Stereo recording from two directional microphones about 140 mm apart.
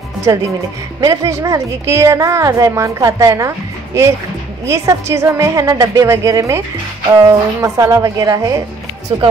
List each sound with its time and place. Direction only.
1.0 s a woman's voice: 25° right (ahead or behind)